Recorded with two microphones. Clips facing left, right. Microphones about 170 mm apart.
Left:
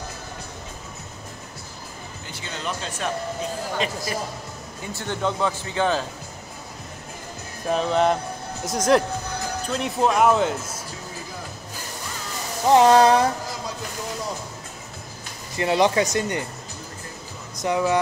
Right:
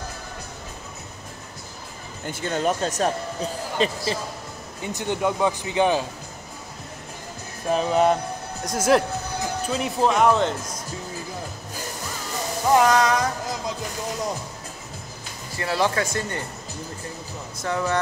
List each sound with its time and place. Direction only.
2.2 s speech: 50° right (ahead or behind)
3.8 s speech: 30° right (ahead or behind)
4.8 s speech: 15° right (ahead or behind)
7.7 s speech: 5° right (ahead or behind)
12.6 s speech: 25° left (ahead or behind)
15.5 s speech: 20° left (ahead or behind)
17.6 s speech: 15° left (ahead or behind)